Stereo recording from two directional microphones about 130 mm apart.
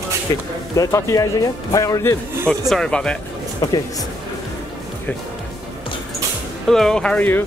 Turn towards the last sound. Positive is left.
turn(degrees=15)  # may be behind; listen again after turning